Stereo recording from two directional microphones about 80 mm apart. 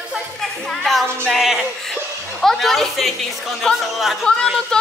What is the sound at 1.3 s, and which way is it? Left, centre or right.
Speech, centre.